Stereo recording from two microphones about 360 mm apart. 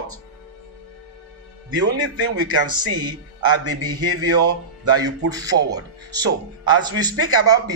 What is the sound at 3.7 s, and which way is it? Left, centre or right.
Speech, right.